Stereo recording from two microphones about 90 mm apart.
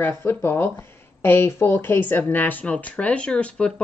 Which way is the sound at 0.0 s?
25° left (ahead or behind).